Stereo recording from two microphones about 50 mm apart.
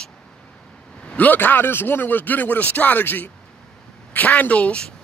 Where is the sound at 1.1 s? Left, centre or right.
Left.